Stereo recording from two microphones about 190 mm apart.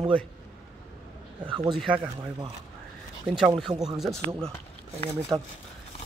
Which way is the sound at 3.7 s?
20° right (ahead or behind).